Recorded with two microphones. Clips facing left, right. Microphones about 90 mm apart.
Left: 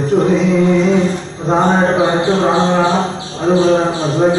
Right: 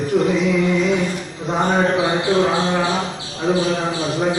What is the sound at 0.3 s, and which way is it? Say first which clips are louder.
Music: left 5 dB; 35° left (ahead or behind).